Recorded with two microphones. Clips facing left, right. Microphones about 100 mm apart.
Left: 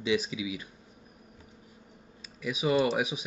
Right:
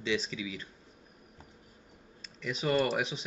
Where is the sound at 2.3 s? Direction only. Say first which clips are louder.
Left 3 dB; 10° left (ahead or behind).